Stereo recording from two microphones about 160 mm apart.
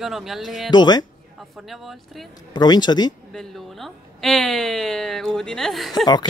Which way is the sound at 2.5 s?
25° left (ahead or behind).